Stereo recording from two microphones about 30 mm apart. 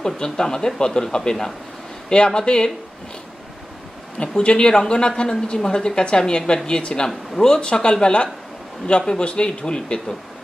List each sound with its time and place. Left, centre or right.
0.0 s speech: left
4.4 s a man's voice: left
7.3 s a man's voice: left
9.5 s speech: left